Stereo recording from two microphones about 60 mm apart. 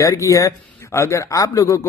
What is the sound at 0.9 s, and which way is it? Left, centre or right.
Speech, left.